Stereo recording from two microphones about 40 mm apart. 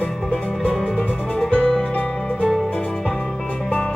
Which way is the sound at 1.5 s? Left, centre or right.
Left.